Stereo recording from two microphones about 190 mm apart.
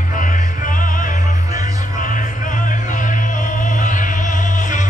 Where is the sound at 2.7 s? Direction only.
45° left (ahead or behind).